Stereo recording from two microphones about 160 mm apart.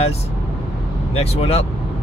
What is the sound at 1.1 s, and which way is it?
Speech, 40° left (ahead or behind).